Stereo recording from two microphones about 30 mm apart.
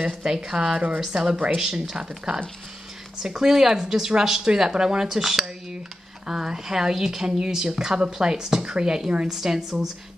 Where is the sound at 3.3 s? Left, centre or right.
Centre.